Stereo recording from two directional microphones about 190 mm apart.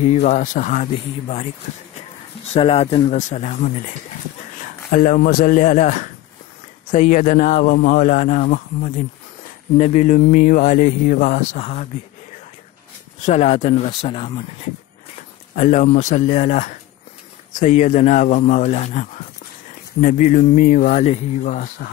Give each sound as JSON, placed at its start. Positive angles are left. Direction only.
{"t": 0.0, "sound": "speech", "side_deg": 35}
{"t": 2.5, "sound": "speech", "side_deg": 35}
{"t": 13.2, "sound": "speech", "side_deg": 35}
{"t": 15.5, "sound": "speech", "side_deg": 40}